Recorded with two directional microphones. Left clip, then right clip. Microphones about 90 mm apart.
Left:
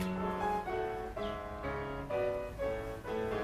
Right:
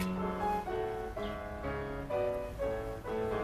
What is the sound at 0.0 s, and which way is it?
Music, 35° left (ahead or behind).